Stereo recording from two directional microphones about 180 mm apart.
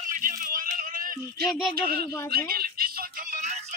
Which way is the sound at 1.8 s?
55° right (ahead or behind).